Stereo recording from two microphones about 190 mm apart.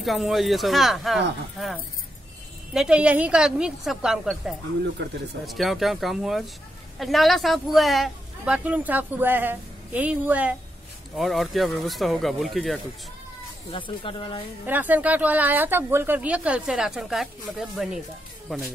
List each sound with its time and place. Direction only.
0.0 s a woman's voice: centre (ahead or behind)
2.7 s a woman's voice: 5° right (ahead or behind)
5.0 s speech: 65° right (ahead or behind)
5.5 s a woman's voice: centre (ahead or behind)
13.7 s speech: 25° left (ahead or behind)
14.7 s a woman's voice: 10° right (ahead or behind)